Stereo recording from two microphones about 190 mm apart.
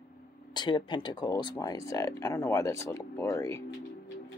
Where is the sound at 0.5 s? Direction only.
25° left (ahead or behind).